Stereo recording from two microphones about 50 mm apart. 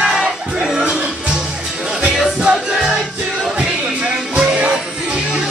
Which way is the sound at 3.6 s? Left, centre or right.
Centre.